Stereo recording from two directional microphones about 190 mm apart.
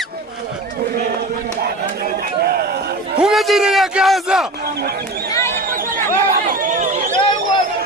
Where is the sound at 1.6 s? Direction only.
55° right (ahead or behind).